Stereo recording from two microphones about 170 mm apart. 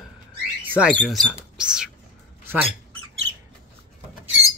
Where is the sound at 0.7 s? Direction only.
5° right (ahead or behind).